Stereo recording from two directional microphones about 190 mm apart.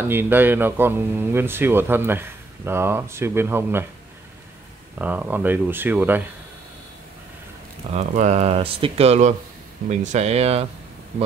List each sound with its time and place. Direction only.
0.0 s speech: 10° right (ahead or behind)
4.9 s speech: 10° right (ahead or behind)
7.9 s speech: 35° right (ahead or behind)